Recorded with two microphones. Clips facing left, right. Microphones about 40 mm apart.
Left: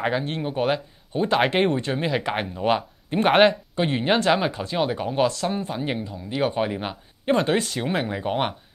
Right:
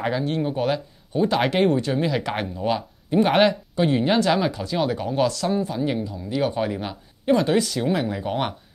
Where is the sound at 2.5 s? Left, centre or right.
Left.